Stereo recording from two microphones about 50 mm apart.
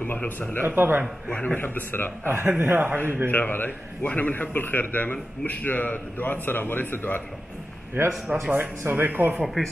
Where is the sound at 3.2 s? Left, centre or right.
Left.